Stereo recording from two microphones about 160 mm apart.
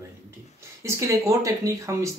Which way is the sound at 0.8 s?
20° right (ahead or behind).